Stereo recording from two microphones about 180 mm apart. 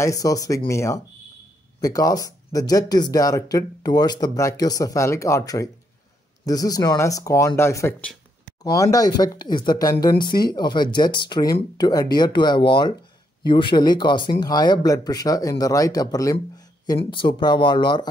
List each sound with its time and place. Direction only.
0.0 s speech: 20° left (ahead or behind)